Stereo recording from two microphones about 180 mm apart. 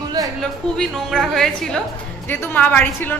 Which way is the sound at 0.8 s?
5° left (ahead or behind).